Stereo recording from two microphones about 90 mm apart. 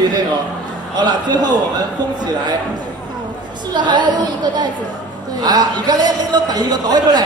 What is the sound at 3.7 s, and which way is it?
Speech, 55° right (ahead or behind).